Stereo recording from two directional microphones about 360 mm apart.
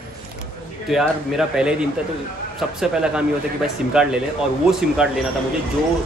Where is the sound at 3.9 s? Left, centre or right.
Centre.